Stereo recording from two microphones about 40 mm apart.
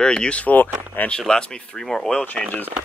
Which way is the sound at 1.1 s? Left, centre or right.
Centre.